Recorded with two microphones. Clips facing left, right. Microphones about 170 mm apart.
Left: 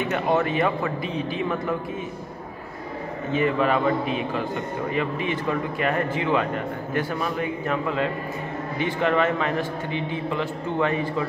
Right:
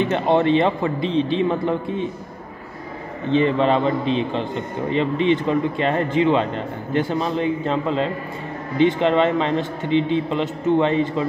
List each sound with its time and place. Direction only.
0.0 s a man's voice: 25° right (ahead or behind)
3.3 s a man's voice: 25° right (ahead or behind)